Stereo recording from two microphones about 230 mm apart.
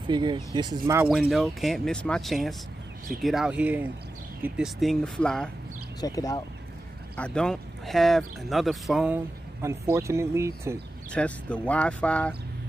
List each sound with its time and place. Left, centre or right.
0.0 s speech: centre
1.0 s speech: centre
5.9 s speech: centre
7.2 s speech: centre
11.1 s speech: centre